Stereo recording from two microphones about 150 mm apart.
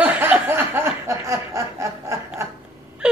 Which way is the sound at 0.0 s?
10° right (ahead or behind).